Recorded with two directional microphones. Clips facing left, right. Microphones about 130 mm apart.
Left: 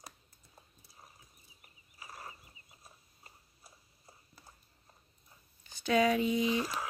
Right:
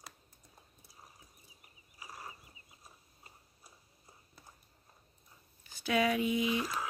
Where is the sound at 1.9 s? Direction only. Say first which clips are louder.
Even; 15° right (ahead or behind).